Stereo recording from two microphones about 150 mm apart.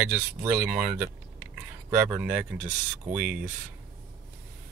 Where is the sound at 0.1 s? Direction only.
10° right (ahead or behind).